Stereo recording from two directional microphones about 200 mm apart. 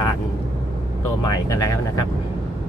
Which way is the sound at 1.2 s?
20° left (ahead or behind).